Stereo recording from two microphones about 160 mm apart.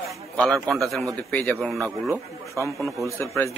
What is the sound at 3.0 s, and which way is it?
Speech, 20° left (ahead or behind).